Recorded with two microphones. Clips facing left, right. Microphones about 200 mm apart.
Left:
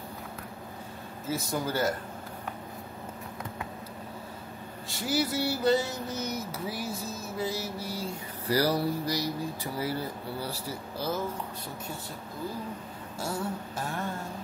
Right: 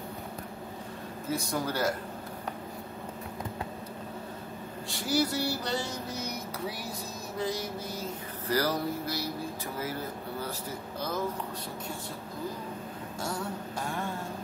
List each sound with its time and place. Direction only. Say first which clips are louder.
1.2 s music: even; centre (ahead or behind)
4.8 s speech: right 1 dB; centre (ahead or behind)
5.5 s music: left 7 dB; 5° left (ahead or behind)
7.3 s music: right 1 dB; 5° left (ahead or behind)
10.4 s speech: left 1 dB; 10° left (ahead or behind)
13.2 s music: left 2 dB; 5° left (ahead or behind)